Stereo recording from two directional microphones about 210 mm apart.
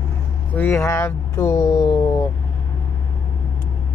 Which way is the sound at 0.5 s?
10° left (ahead or behind).